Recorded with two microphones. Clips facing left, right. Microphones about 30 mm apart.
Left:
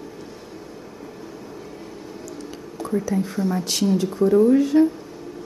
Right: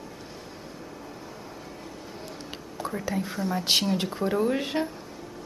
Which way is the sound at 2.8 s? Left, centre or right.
Centre.